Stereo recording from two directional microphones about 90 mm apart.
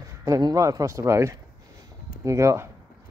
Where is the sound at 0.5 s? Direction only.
40° right (ahead or behind).